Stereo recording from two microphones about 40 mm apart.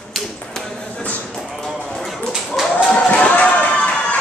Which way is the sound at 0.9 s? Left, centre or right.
Left.